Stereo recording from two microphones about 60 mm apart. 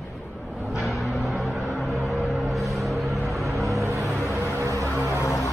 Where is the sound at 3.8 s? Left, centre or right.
Right.